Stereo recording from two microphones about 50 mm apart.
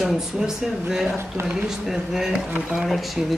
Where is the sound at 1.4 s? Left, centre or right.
Right.